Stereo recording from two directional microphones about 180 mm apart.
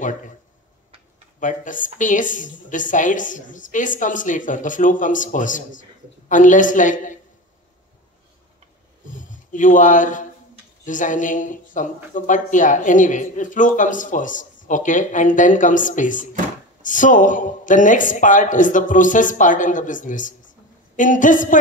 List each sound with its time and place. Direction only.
1.4 s a woman's voice: 45° left (ahead or behind)
9.1 s a woman's voice: 45° left (ahead or behind)